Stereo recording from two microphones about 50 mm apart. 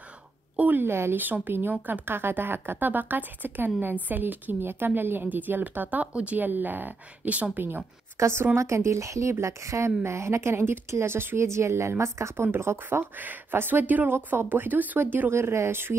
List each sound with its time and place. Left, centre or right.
0.7 s speech: right
1.1 s speech: right
8.2 s a woman's voice: right
8.5 s a woman's voice: right
12.4 s speech: right
13.1 s speech: right
15.3 s a woman's voice: right